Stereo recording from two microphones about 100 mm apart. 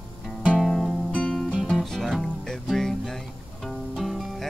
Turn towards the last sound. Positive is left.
turn(degrees=0)  # may be behind; listen again after turning